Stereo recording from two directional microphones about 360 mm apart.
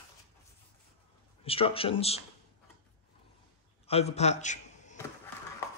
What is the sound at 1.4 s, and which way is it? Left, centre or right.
Speech, centre.